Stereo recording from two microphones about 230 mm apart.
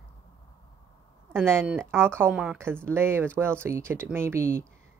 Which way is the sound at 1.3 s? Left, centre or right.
Centre.